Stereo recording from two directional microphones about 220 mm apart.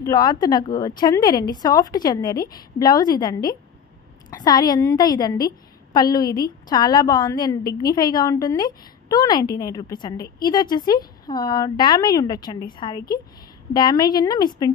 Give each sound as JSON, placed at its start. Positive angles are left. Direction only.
{"t": 0.0, "sound": "speech", "side_deg": 20}